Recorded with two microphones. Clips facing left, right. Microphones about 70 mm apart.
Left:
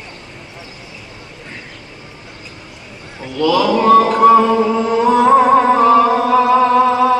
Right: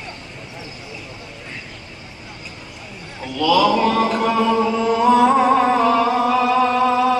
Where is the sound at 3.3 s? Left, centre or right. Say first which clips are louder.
Left 2 dB; left.